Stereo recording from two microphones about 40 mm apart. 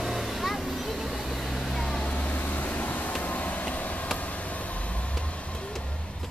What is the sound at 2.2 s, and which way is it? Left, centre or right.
Vehicle, left.